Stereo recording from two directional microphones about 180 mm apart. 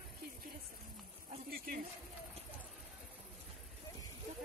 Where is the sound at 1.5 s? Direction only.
55° right (ahead or behind).